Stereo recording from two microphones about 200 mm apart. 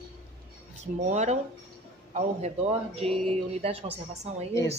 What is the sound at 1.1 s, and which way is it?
Speech, 35° right (ahead or behind).